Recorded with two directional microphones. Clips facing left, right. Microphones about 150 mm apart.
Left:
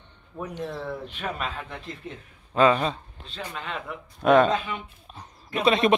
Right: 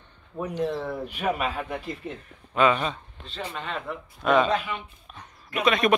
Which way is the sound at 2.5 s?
35° left (ahead or behind).